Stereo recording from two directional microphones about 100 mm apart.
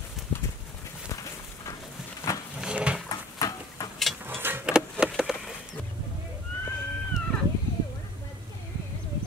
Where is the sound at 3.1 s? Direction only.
35° left (ahead or behind).